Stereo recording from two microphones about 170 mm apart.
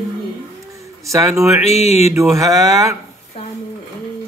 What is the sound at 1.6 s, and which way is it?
Speech, 40° left (ahead or behind).